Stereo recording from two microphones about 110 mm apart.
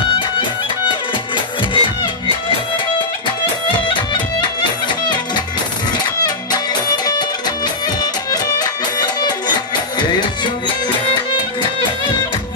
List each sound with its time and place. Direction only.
0.4 s music: 50° left (ahead or behind)
3.9 s music: 45° left (ahead or behind)
7.1 s music: 40° left (ahead or behind)